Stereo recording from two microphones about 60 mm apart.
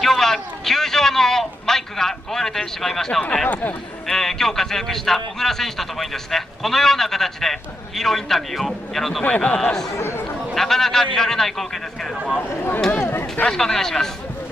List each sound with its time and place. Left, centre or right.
0.0 s a sound: centre
4.1 s a man's voice: centre
9.2 s a man's voice: left
9.6 s a man's voice: centre
9.9 s speech: left
10.5 s a man's voice: centre
12.4 s speech: left
13.4 s a man's voice: centre